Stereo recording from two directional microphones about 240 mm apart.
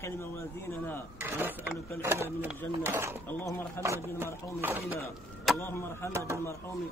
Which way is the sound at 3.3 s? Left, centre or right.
Centre.